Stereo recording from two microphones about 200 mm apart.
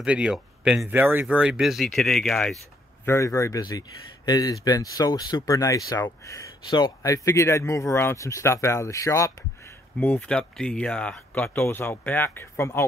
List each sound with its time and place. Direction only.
0.0 s speech: 5° right (ahead or behind)
3.1 s speech: 15° left (ahead or behind)